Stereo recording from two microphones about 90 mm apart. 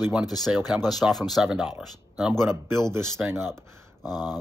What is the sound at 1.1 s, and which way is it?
Speech, centre (ahead or behind).